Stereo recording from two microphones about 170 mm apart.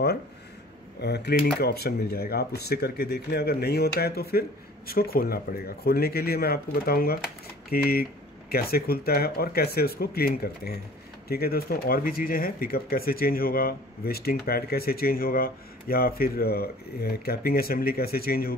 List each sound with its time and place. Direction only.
1.0 s speech: 75° left (ahead or behind)